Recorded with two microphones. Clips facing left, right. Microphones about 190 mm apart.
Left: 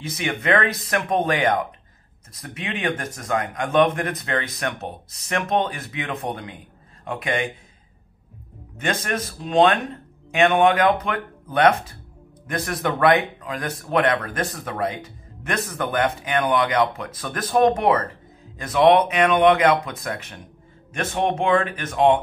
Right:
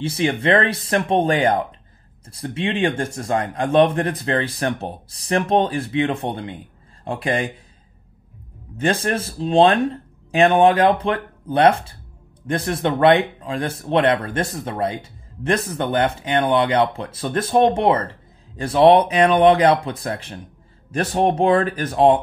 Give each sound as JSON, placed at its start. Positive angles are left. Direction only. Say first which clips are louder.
{"t": 0.0, "sound": "speech", "louder": "right 6 dB", "side_deg": -30}
{"t": 8.7, "sound": "speech", "louder": "right 5 dB", "side_deg": -30}